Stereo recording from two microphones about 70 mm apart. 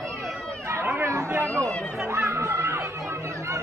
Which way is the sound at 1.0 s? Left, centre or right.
Right.